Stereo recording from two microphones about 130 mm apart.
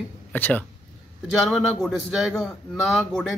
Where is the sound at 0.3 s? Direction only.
15° left (ahead or behind).